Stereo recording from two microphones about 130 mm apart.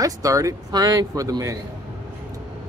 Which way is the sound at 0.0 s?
25° right (ahead or behind).